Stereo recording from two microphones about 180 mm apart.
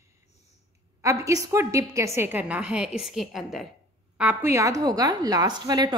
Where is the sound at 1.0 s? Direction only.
15° right (ahead or behind).